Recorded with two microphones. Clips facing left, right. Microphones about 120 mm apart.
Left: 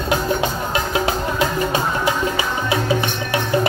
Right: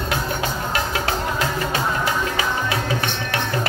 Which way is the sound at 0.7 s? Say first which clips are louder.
Left 3 dB; 20° left (ahead or behind).